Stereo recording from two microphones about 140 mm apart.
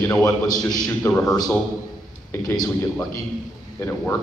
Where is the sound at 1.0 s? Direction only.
20° left (ahead or behind).